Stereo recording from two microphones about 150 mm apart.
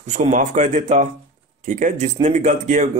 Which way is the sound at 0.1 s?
55° right (ahead or behind).